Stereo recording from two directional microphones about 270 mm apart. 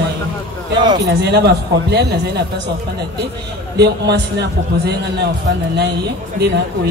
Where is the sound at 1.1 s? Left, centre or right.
Right.